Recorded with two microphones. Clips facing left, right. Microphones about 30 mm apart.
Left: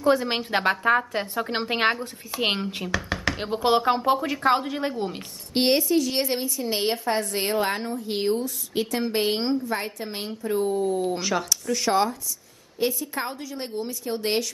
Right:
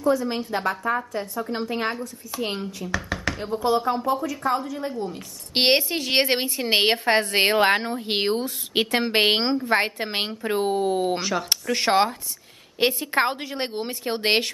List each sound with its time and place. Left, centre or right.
0.0 s a woman's voice: left
2.4 s speech: left
2.9 s a sound: centre
3.6 s a woman's voice: left
5.5 s a woman's voice: right